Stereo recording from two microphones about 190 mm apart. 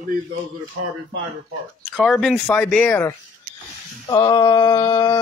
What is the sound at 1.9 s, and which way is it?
Speech, centre (ahead or behind).